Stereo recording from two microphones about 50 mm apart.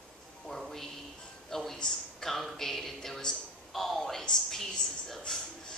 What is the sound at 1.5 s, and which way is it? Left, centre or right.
A man's voice, centre.